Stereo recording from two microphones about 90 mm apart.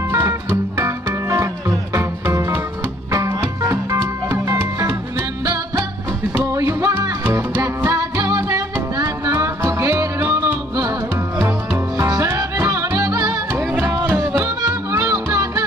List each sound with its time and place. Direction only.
0.1 s music: 30° right (ahead or behind)
6.5 s music: 35° right (ahead or behind)
12.1 s music: 40° right (ahead or behind)
13.5 s music: 25° right (ahead or behind)